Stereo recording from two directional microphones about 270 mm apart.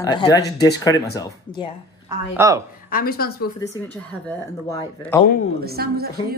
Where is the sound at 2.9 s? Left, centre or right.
Left.